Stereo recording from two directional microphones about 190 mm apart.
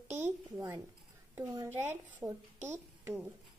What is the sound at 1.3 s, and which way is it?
A child's voice, 15° right (ahead or behind).